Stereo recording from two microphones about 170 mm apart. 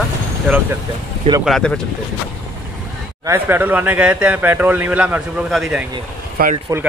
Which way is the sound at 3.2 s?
15° right (ahead or behind).